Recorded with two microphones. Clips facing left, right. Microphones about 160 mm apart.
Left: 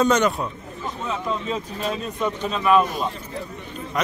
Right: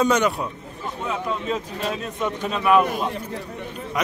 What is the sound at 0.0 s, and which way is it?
Speech, 10° right (ahead or behind).